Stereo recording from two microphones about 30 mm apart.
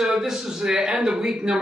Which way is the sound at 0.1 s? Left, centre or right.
Right.